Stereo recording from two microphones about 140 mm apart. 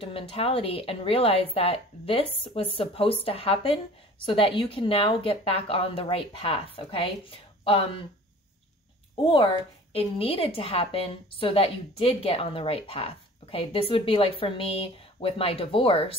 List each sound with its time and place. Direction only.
0.0 s a woman's voice: 40° left (ahead or behind)
9.9 s a woman's voice: 45° left (ahead or behind)